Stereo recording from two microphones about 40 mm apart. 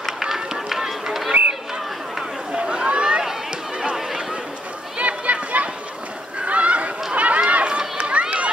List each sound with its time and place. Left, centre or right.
0.2 s music: centre
2.5 s a sound: right
4.9 s run: right
6.4 s honk: right
7.2 s run: right